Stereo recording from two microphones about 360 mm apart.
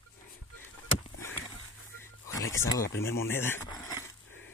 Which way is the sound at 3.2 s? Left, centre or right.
Centre.